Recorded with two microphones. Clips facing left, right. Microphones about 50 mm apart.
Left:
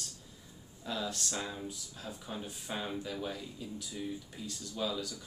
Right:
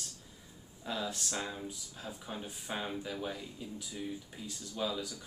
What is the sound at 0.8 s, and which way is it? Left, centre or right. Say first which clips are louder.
Speech: even; centre.